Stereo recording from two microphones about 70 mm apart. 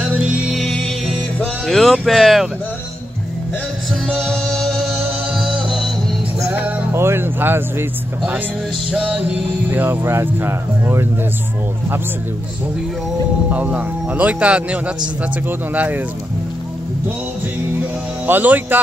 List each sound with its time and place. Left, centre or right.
0.1 s music: centre
0.5 s music: centre
1.7 s speech: centre
4.2 s music: centre
5.3 s music: centre
6.5 s music: right
6.9 s speech: right
8.9 s music: centre
9.7 s speech: right
13.5 s speech: right
18.2 s speech: right